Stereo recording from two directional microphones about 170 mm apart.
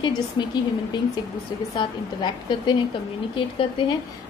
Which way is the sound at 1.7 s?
25° left (ahead or behind).